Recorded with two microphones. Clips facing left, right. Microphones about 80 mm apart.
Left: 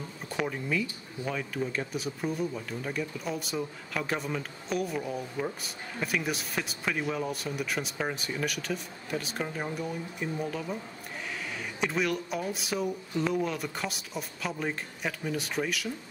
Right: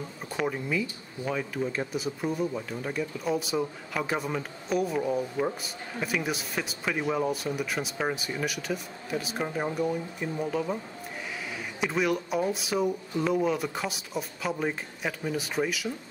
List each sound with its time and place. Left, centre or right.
0.3 s speech: centre
7.0 s speech: centre
7.2 s speech: centre